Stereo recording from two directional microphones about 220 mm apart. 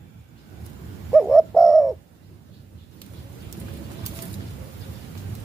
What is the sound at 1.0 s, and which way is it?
Bird, centre (ahead or behind).